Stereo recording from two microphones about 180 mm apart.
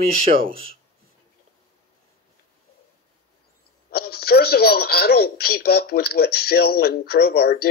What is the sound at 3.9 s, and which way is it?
Speech, 60° left (ahead or behind).